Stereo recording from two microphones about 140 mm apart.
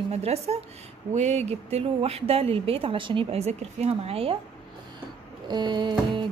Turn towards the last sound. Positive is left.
turn(degrees=-30)  # may be behind; listen again after turning